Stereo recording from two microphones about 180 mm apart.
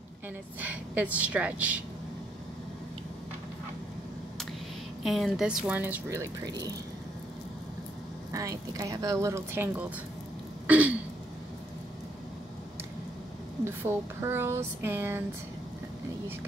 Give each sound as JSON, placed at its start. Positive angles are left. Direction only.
{"t": 0.6, "sound": "speech", "side_deg": -10}
{"t": 5.0, "sound": "speech", "side_deg": 0}
{"t": 8.3, "sound": "speech", "side_deg": -20}
{"t": 10.7, "sound": "throat clearing", "side_deg": -10}
{"t": 13.7, "sound": "speech", "side_deg": -15}